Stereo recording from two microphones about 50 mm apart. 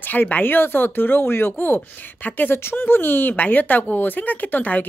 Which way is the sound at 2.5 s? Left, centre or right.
Left.